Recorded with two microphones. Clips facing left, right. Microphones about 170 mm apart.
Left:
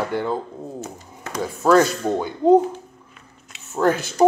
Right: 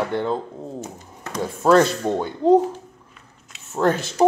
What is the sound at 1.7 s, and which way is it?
Speech, 5° left (ahead or behind).